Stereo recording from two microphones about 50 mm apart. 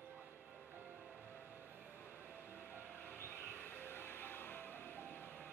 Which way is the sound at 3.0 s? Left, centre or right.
Left.